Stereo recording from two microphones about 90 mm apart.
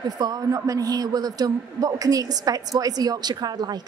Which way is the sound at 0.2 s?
45° right (ahead or behind).